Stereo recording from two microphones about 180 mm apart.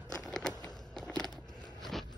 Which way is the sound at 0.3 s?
5° left (ahead or behind).